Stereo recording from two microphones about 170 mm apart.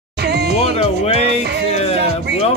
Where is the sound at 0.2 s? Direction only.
75° right (ahead or behind).